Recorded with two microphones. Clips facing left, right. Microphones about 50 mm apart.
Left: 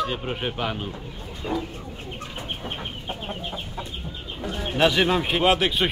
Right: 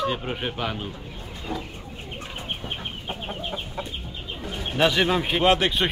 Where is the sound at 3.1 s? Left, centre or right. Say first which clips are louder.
Right 1 dB; centre.